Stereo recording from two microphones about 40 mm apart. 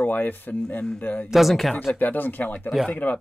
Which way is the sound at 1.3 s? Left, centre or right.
Centre.